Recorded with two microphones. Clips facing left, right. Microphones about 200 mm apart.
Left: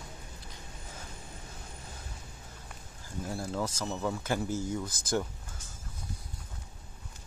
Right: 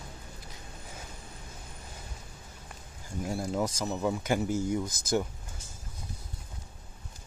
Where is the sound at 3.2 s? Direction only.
15° right (ahead or behind).